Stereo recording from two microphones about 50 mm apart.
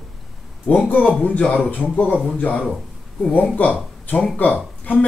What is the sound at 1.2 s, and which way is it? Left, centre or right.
Speech, left.